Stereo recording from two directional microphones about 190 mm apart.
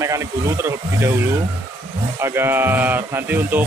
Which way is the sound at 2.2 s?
15° right (ahead or behind).